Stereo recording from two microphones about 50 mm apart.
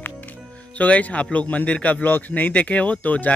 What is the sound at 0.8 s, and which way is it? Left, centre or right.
A man's voice, left.